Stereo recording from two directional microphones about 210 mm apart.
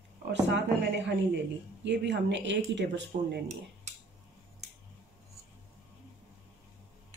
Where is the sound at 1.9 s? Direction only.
55° right (ahead or behind).